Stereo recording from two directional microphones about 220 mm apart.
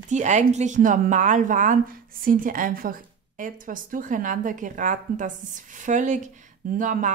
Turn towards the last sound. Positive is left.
turn(degrees=-35)  # may be behind; listen again after turning